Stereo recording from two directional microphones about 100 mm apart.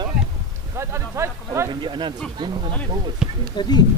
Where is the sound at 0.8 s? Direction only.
25° right (ahead or behind).